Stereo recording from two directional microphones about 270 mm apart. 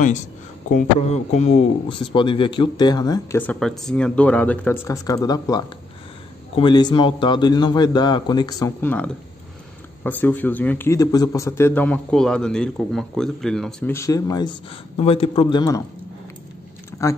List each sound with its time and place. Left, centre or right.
0.7 s a man's voice: left